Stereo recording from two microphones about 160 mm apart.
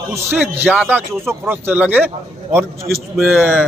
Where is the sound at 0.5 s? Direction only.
10° right (ahead or behind).